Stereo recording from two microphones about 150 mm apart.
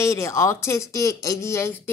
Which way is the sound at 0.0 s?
20° left (ahead or behind).